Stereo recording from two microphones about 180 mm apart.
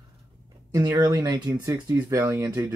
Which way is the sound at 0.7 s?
20° right (ahead or behind).